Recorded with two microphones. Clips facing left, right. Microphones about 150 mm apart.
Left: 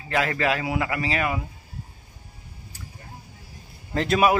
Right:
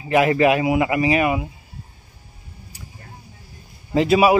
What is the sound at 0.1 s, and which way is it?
A man's voice, 15° right (ahead or behind).